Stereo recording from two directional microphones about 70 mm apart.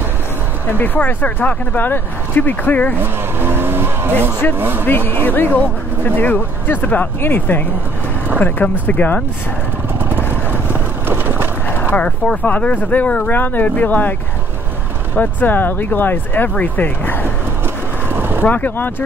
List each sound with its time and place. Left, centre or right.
0.7 s speech: left
3.0 s speech: right
4.8 s speech: left
10.0 s vehicle: right
12.4 s speech: centre
15.1 s speech: left
18.1 s vehicle: right
18.4 s speech: left